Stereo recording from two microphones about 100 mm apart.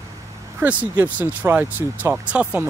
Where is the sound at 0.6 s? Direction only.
15° right (ahead or behind).